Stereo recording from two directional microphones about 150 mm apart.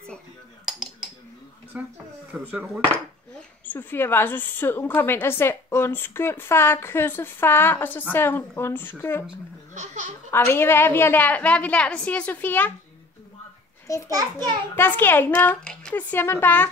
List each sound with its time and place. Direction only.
1.7 s a sound: 10° right (ahead or behind)
2.5 s speech: 10° right (ahead or behind)
3.3 s a woman's voice: 15° left (ahead or behind)
10.3 s a woman's voice: 15° left (ahead or behind)
13.8 s a child's voice: 20° left (ahead or behind)
14.1 s a child's voice: 25° right (ahead or behind)
14.8 s a woman's voice: 15° left (ahead or behind)